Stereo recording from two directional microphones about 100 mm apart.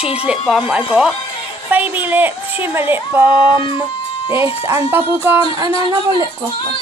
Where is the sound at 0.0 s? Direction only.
80° left.